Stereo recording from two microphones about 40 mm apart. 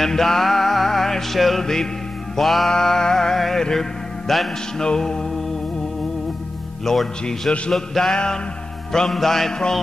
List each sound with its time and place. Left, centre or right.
0.0 s music: centre
2.7 s music: centre
6.8 s a man's voice: centre
7.7 s music: centre